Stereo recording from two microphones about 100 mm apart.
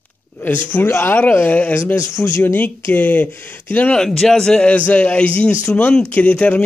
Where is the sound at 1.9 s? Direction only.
35° left (ahead or behind).